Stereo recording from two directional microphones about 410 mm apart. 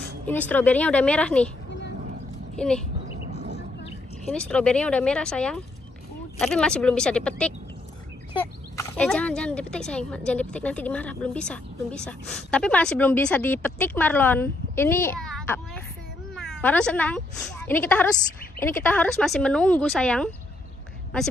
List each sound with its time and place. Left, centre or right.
0.2 s speech: centre
2.5 s speech: centre
3.3 s a sound: right
4.3 s speech: centre